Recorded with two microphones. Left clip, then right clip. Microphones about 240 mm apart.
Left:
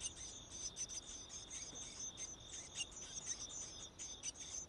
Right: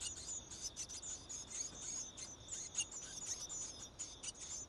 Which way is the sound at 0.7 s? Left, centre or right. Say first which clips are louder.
Left 1 dB; centre.